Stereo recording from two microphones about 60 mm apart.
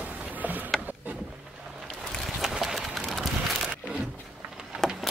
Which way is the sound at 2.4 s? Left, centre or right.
Centre.